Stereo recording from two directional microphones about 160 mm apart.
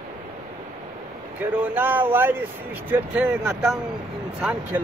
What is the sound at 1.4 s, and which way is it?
Speech, 10° right (ahead or behind).